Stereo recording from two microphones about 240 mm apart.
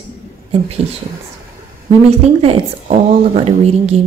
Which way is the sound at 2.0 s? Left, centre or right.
Right.